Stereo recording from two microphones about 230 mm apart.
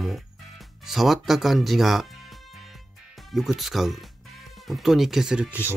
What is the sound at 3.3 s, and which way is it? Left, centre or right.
Speech, centre.